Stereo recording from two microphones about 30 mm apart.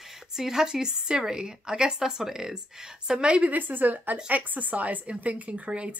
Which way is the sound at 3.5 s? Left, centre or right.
Right.